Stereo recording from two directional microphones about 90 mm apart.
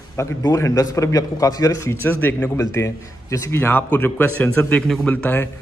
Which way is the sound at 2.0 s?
20° left (ahead or behind).